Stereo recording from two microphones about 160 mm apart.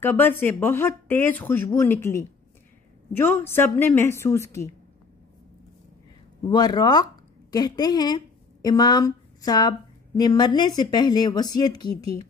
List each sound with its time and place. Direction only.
0.0 s speech: 15° left (ahead or behind)
6.5 s a woman's voice: 25° left (ahead or behind)